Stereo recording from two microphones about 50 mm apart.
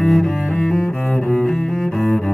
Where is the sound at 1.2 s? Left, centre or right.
Left.